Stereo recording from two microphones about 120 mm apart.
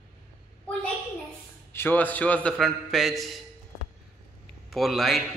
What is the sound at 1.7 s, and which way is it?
A man's voice, 15° left (ahead or behind).